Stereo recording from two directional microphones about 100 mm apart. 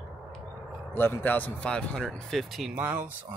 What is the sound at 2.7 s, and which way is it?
Speech, 20° right (ahead or behind).